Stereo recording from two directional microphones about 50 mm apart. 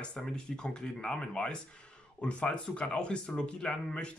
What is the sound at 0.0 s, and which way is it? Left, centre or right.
Speech, centre.